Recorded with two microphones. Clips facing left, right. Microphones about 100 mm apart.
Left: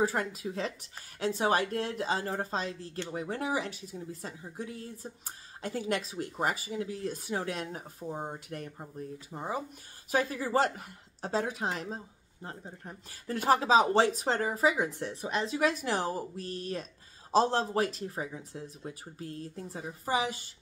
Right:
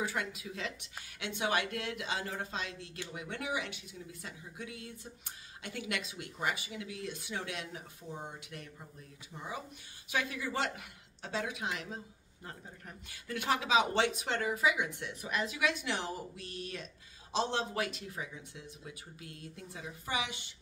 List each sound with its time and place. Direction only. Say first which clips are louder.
0.0 s speech: left 7 dB; 35° left (ahead or behind)